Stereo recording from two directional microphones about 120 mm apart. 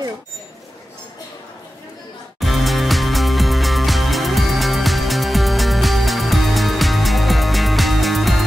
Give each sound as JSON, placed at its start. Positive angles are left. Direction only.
{"t": 2.4, "sound": "music", "side_deg": 0}